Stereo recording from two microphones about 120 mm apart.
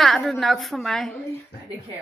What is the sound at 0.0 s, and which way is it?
A woman's voice, centre (ahead or behind).